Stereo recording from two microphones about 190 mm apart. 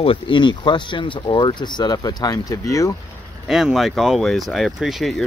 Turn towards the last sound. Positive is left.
turn(degrees=0)  # may be behind; listen again after turning